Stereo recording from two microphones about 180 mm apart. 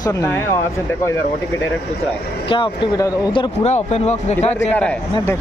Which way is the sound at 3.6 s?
40° left (ahead or behind).